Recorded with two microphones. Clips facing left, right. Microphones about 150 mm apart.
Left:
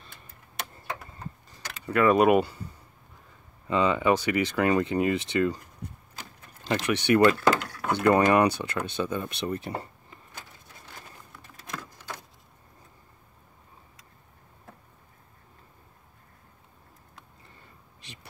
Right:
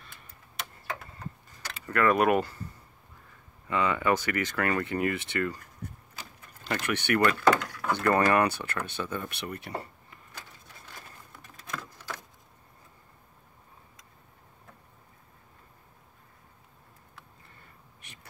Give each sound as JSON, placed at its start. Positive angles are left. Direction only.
{"t": 1.9, "sound": "speech", "side_deg": 15}
{"t": 3.6, "sound": "speech", "side_deg": 20}
{"t": 6.7, "sound": "speech", "side_deg": 20}
{"t": 7.2, "sound": "door", "side_deg": 30}
{"t": 7.9, "sound": "speech", "side_deg": 20}